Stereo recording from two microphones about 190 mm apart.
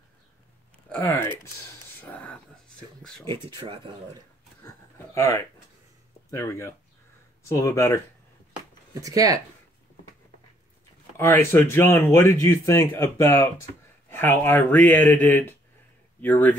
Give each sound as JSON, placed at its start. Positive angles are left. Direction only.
{"t": 0.8, "sound": "speech", "side_deg": 10}
{"t": 2.0, "sound": "a sound", "side_deg": 10}
{"t": 3.5, "sound": "speech", "side_deg": -30}
{"t": 4.9, "sound": "speech", "side_deg": 15}
{"t": 9.0, "sound": "speech", "side_deg": -20}
{"t": 11.1, "sound": "speech", "side_deg": 10}